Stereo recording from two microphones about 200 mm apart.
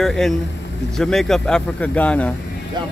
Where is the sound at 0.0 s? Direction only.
Centre (ahead or behind).